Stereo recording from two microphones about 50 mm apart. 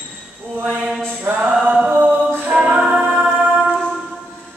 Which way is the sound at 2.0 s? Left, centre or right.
Right.